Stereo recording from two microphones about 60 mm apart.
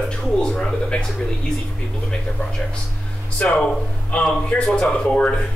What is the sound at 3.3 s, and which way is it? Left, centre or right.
A man's voice, centre.